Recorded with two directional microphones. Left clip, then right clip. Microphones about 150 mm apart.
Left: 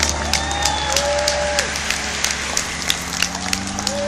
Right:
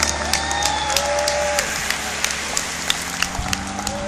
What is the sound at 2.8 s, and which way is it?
Run, 15° right (ahead or behind).